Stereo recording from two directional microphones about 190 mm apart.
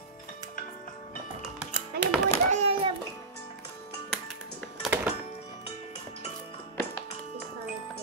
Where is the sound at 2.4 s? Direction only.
35° right (ahead or behind).